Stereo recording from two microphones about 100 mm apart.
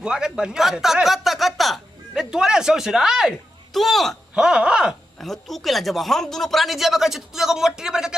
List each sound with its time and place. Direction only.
0.0 s speech: 10° right (ahead or behind)
4.4 s speech: 10° right (ahead or behind)
5.2 s speech: centre (ahead or behind)